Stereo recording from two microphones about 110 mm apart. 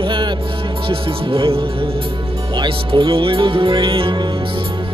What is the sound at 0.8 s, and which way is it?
Speech, 55° right (ahead or behind).